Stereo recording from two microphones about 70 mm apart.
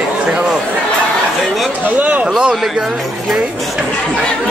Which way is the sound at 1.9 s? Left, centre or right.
Right.